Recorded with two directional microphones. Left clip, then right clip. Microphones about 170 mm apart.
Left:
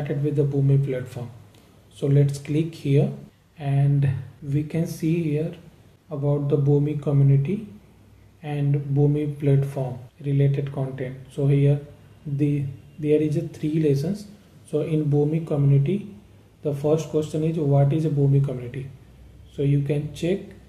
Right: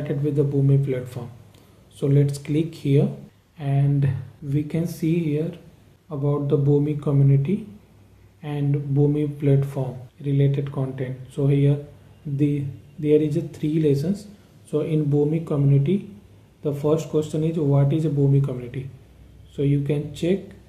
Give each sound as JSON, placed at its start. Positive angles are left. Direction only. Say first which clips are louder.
{"t": 0.0, "sound": "speech", "louder": "right 1 dB", "side_deg": -40}